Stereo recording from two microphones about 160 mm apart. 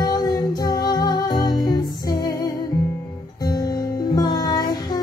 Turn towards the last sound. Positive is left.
turn(degrees=25)  # may be behind; listen again after turning